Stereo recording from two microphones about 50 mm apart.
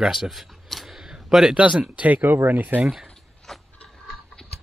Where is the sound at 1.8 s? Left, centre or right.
Right.